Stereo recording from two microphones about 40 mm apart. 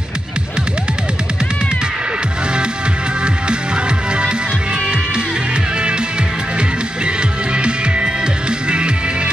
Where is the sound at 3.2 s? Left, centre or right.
Right.